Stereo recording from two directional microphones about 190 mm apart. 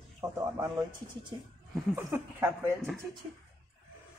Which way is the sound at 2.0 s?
15° right (ahead or behind).